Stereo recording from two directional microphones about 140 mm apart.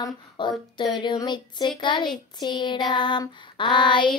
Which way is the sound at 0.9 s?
30° left (ahead or behind).